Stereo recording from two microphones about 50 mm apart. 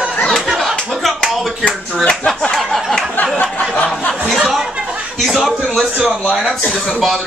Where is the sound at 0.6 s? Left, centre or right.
Centre.